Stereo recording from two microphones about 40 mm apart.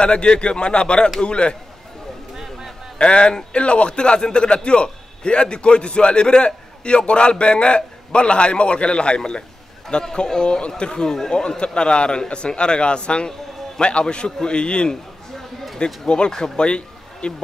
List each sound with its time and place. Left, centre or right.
0.0 s a man's voice: left
3.0 s a man's voice: left
16.6 s a sound: left